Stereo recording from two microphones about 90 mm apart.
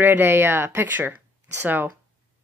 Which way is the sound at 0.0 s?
25° right (ahead or behind).